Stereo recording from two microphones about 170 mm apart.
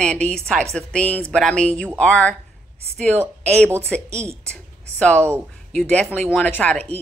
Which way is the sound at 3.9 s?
5° left (ahead or behind).